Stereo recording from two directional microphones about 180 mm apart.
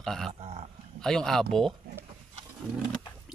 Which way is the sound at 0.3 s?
35° right (ahead or behind).